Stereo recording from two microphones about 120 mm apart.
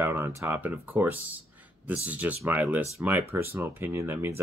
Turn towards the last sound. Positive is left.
turn(degrees=-20)  # may be behind; listen again after turning